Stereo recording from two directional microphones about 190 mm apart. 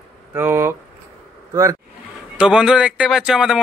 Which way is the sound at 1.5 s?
15° right (ahead or behind).